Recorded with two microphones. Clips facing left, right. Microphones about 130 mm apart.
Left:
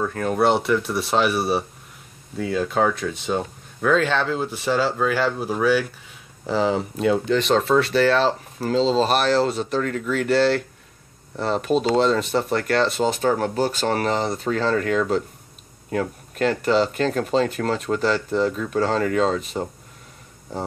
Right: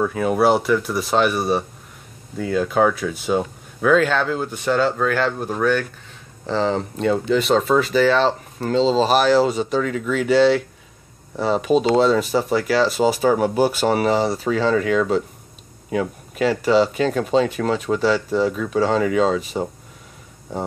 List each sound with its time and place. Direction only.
0.0 s speech: 5° right (ahead or behind)